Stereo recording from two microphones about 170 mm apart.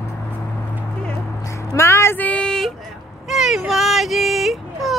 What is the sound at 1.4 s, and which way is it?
Music, 20° left (ahead or behind).